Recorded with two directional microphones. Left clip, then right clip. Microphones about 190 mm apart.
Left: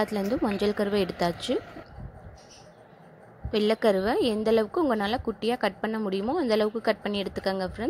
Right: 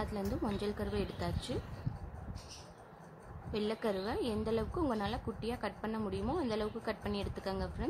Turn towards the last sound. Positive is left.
turn(degrees=30)  # may be behind; listen again after turning